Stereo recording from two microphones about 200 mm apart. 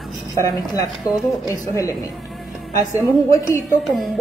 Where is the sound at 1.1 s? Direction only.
Centre (ahead or behind).